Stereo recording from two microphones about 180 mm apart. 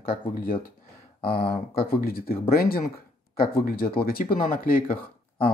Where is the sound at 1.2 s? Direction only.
30° left (ahead or behind).